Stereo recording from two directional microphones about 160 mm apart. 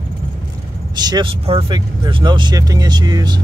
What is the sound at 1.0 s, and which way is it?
Speech, 25° right (ahead or behind).